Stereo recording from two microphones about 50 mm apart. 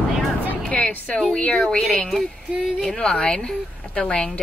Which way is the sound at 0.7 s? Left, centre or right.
Left.